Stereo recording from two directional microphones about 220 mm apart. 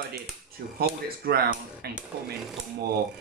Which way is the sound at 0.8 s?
45° right (ahead or behind).